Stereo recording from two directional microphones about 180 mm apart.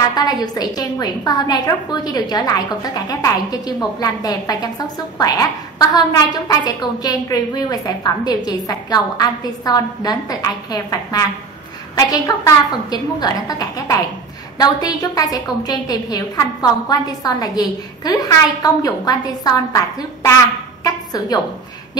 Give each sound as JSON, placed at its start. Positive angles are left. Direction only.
{"t": 0.1, "sound": "a woman's voice", "side_deg": 20}